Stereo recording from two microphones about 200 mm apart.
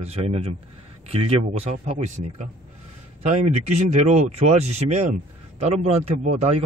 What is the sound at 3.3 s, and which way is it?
A man's voice, 35° right (ahead or behind).